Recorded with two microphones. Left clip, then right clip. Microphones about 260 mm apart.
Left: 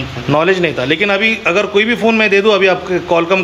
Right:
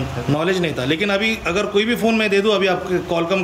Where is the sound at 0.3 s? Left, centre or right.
Centre.